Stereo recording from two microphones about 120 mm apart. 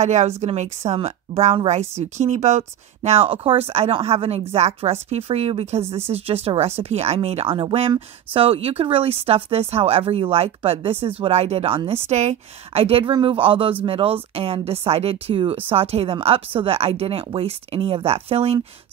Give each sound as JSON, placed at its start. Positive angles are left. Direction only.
{"t": 0.0, "sound": "a woman's voice", "side_deg": -70}
{"t": 0.9, "sound": "speech", "side_deg": -55}
{"t": 2.1, "sound": "speech", "side_deg": -70}